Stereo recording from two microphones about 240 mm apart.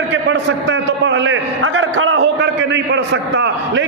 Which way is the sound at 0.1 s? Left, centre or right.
Right.